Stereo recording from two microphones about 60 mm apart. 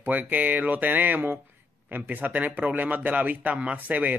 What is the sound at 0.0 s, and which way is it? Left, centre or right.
Speech, right.